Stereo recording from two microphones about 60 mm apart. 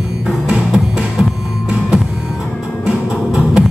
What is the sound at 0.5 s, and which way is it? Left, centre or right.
Music, centre.